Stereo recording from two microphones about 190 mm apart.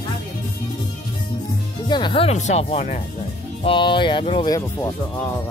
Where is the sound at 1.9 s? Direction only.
25° left (ahead or behind).